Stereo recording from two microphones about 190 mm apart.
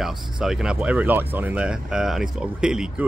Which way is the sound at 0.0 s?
Centre (ahead or behind).